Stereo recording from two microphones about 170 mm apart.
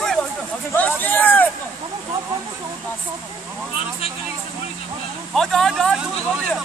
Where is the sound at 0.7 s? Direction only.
10° left (ahead or behind).